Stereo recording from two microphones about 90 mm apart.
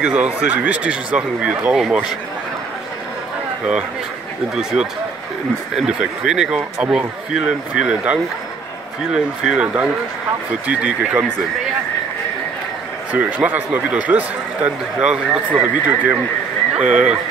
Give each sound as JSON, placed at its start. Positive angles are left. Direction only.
{"t": 0.1, "sound": "speech", "side_deg": -15}
{"t": 4.6, "sound": "speech", "side_deg": -5}
{"t": 13.1, "sound": "speech", "side_deg": -15}